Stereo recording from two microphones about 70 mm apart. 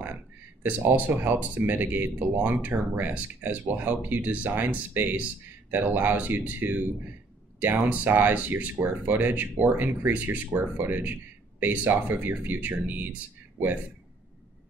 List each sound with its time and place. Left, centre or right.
0.0 s speech: right
7.9 s speech: right
11.6 s speech: right